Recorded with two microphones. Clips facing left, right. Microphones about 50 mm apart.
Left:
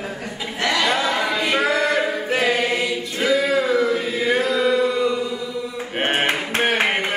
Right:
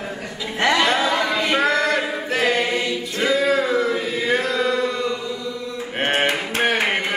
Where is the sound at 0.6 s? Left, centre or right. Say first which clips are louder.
Right 3 dB; right.